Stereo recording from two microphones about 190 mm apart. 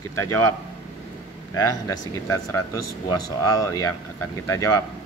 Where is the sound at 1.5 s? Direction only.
20° left (ahead or behind).